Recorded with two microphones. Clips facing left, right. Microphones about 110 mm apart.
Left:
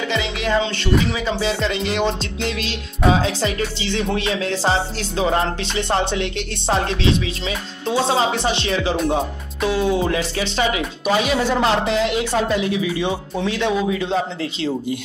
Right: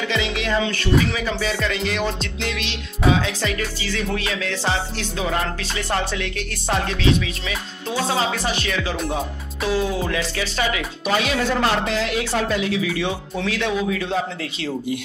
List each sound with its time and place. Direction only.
0.1 s music: 30° left (ahead or behind)
11.1 s music: 15° left (ahead or behind)